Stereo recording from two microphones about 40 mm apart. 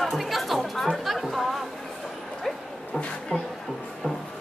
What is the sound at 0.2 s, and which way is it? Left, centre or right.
Chatter, centre.